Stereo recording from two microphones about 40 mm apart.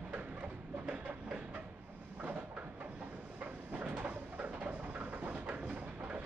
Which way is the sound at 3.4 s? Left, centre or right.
Right.